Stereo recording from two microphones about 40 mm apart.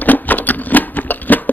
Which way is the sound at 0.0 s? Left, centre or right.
Left.